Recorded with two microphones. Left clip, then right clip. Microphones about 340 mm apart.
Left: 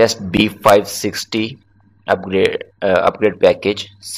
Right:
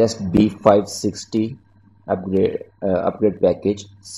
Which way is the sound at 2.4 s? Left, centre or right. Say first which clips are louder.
Left 5 dB; left.